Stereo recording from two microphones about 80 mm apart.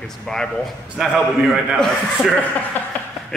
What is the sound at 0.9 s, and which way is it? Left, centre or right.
A man's voice, centre.